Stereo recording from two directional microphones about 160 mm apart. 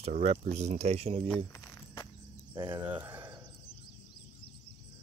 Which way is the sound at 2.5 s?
30° right (ahead or behind).